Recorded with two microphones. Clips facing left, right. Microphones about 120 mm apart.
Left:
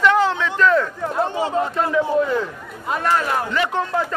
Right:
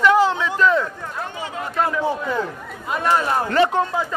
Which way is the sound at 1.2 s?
30° left (ahead or behind).